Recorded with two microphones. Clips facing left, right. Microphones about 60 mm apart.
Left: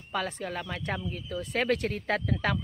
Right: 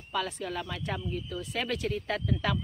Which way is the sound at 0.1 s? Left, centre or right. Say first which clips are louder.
Even; left.